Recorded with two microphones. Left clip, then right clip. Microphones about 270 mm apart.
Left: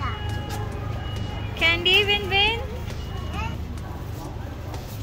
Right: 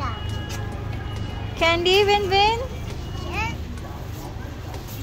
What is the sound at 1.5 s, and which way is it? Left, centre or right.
A child's voice, centre.